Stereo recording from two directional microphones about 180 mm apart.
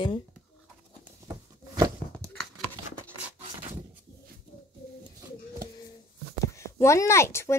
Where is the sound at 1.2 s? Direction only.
20° right (ahead or behind).